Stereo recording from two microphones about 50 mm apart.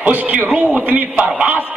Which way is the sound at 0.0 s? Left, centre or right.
Right.